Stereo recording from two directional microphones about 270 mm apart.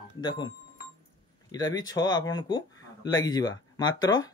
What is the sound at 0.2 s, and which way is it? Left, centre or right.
Speech, centre.